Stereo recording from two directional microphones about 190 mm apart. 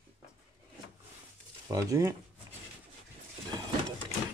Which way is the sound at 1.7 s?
20° right (ahead or behind).